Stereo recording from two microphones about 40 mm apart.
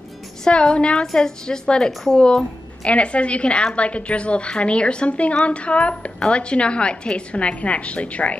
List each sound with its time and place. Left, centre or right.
0.5 s a woman's voice: left
2.9 s a woman's voice: left